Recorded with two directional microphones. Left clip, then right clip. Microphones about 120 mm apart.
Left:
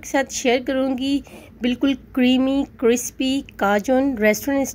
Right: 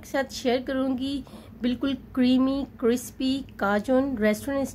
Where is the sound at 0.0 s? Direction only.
45° left (ahead or behind).